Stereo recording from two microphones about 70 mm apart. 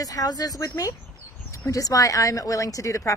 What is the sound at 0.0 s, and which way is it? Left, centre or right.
Speech, left.